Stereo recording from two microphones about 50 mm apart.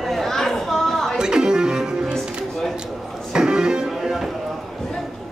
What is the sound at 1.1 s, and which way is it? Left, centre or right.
Music, centre.